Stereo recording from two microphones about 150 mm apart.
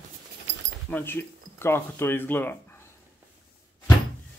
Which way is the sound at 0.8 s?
15° left (ahead or behind).